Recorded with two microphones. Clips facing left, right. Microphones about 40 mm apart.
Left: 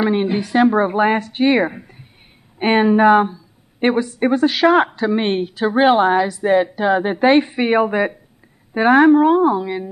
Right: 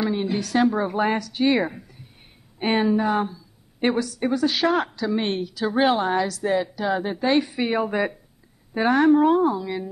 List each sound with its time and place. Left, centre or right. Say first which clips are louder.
0.0 s a sound: left 7 dB; left
0.4 s a woman's voice: left 5 dB; left
3.2 s a sound: left 8 dB; left
4.2 s a woman's voice: left 8 dB; left
4.5 s a woman's voice: left 8 dB; centre
4.7 s a woman's voice: left 7 dB; left
6.0 s a woman's voice: left 7 dB; left
6.6 s a woman's voice: left 8 dB; left
7.9 s a woman's voice: left 5 dB; centre
9.5 s a woman's voice: left 6 dB; left